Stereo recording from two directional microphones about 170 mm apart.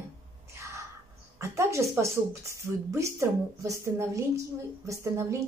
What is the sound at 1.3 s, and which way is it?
Speech, 15° right (ahead or behind).